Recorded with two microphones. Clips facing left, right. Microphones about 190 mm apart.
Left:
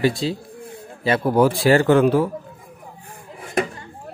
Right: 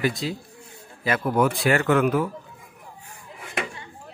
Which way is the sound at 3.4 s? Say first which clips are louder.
Left 8 dB; 40° left (ahead or behind).